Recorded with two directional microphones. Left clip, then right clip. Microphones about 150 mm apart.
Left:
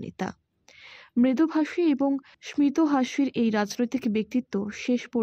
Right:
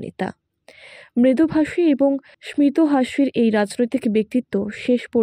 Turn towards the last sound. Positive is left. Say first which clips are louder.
# right 8 dB
turn(degrees=-20)  # may be behind; listen again after turning